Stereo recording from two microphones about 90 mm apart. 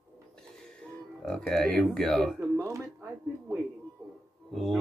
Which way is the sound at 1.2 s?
5° left (ahead or behind).